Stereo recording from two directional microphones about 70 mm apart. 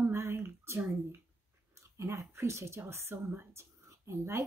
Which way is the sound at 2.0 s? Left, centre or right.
Right.